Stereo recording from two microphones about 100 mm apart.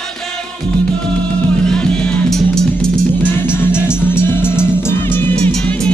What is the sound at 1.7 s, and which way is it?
Music, 10° left (ahead or behind).